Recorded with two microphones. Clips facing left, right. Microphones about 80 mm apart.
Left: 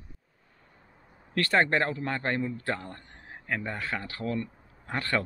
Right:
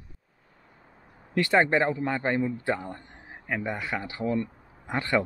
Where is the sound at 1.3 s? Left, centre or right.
Centre.